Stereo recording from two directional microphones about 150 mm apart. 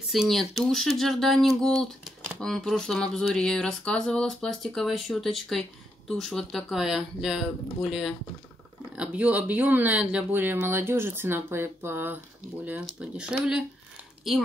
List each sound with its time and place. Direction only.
0.1 s speech: centre (ahead or behind)